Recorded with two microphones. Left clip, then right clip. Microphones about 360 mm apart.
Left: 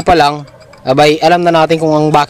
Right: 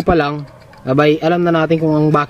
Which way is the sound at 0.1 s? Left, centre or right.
Centre.